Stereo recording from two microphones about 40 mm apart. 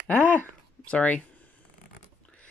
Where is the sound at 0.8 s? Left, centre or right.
Left.